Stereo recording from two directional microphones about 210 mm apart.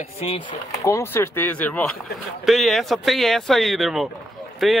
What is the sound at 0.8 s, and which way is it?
Speech, 15° left (ahead or behind).